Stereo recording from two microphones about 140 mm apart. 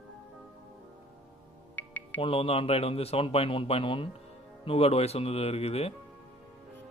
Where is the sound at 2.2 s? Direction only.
45° left (ahead or behind).